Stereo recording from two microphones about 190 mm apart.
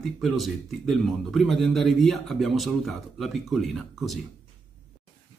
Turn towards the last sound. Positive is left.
turn(degrees=0)  # may be behind; listen again after turning